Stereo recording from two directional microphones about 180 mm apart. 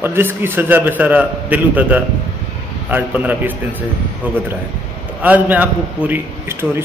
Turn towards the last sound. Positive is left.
turn(degrees=-15)  # may be behind; listen again after turning